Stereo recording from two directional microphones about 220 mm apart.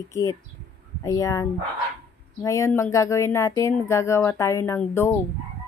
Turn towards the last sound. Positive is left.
turn(degrees=10)  # may be behind; listen again after turning